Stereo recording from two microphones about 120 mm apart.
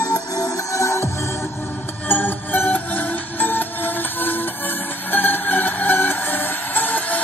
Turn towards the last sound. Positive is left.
turn(degrees=15)  # may be behind; listen again after turning